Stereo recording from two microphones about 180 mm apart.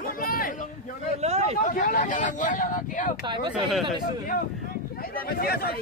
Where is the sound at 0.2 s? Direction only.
50° left (ahead or behind).